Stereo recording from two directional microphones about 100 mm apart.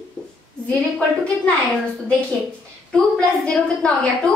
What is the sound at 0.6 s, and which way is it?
Speech, 10° left (ahead or behind).